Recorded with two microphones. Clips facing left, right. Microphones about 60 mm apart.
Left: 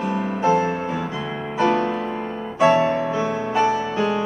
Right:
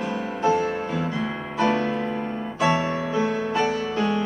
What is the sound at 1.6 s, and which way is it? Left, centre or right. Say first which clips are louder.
Music: left 3 dB; centre.